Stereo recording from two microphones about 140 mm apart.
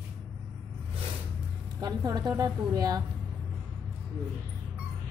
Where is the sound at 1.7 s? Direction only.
30° right (ahead or behind).